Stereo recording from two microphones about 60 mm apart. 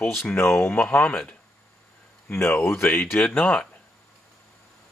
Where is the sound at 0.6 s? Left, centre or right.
Left.